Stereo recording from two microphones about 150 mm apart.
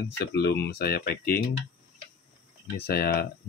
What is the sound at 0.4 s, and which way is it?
Speech, 90° left.